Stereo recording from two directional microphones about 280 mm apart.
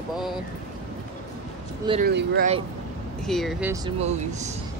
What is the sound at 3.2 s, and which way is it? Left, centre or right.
Speech, centre.